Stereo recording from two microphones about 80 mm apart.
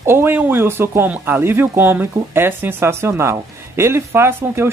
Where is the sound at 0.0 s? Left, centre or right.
Right.